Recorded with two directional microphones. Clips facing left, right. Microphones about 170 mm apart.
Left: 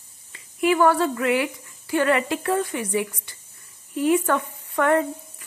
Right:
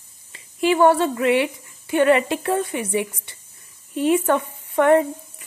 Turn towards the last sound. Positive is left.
turn(degrees=-20)  # may be behind; listen again after turning